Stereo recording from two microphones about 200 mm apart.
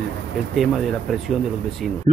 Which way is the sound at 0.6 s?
Centre (ahead or behind).